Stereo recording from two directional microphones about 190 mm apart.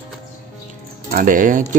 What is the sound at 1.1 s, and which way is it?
Speech, 45° right (ahead or behind).